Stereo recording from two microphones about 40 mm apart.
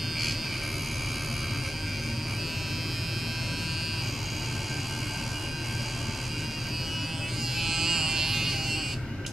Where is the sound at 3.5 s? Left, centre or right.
Centre.